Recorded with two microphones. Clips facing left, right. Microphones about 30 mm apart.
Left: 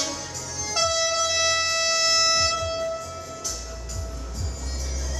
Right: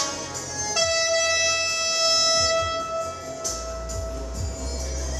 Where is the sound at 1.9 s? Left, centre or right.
Centre.